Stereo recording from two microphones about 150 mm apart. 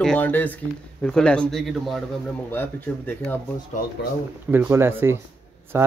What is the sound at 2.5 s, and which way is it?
Speech, 15° left (ahead or behind).